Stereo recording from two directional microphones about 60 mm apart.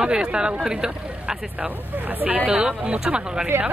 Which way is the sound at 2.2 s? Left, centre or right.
Right.